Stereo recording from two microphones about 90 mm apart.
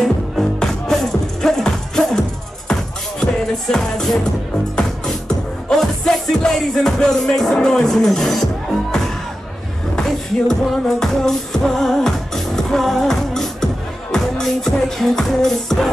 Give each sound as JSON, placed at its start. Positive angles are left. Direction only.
{"t": 0.0, "sound": "music", "side_deg": 5}
{"t": 5.7, "sound": "music", "side_deg": 5}
{"t": 9.9, "sound": "music", "side_deg": 5}